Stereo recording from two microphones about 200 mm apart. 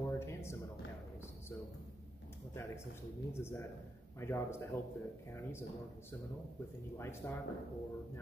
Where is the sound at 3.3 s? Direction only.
10° left (ahead or behind).